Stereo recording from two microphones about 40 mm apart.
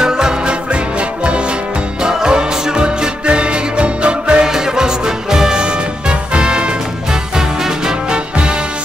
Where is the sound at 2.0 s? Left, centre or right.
Centre.